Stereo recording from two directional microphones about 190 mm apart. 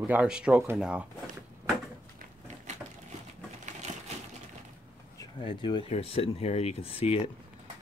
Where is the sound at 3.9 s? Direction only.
40° right (ahead or behind).